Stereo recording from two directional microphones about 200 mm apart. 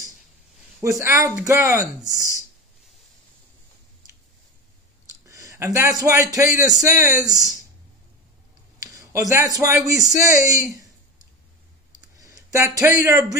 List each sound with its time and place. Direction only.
0.7 s speech: 15° right (ahead or behind)
2.0 s speech: 15° left (ahead or behind)
5.2 s a man's voice: 15° right (ahead or behind)
8.8 s a sound: 15° right (ahead or behind)
9.3 s speech: 15° right (ahead or behind)
12.2 s a man's voice: 15° right (ahead or behind)